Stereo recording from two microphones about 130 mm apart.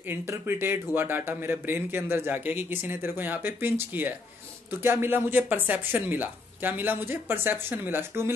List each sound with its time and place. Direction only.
0.1 s speech: 15° right (ahead or behind)